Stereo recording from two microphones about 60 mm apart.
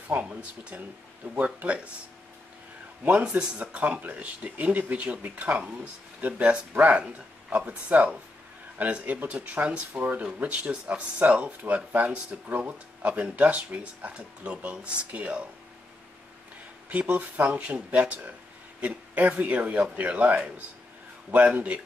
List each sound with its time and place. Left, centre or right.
0.1 s speech: centre
3.1 s speech: right
16.9 s speech: right